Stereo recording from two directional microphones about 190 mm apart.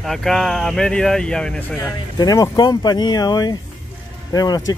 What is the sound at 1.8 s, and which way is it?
Speech, 20° left (ahead or behind).